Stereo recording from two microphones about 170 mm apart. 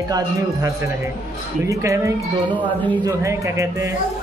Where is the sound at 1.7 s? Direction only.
20° right (ahead or behind).